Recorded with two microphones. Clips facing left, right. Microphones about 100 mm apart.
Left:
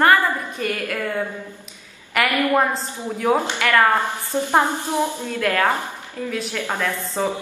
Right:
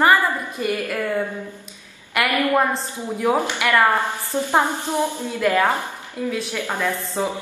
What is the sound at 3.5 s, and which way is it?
Speech, 10° right (ahead or behind).